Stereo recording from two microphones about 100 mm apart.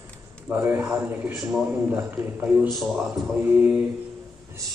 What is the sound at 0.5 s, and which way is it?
A man's voice, 20° right (ahead or behind).